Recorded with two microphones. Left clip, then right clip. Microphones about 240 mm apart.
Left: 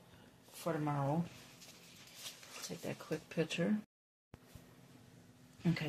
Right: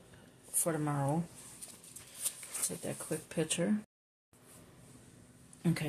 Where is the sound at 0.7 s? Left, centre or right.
Right.